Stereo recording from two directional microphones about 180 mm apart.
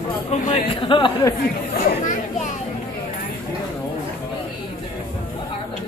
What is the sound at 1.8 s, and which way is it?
Chatter, 45° left (ahead or behind).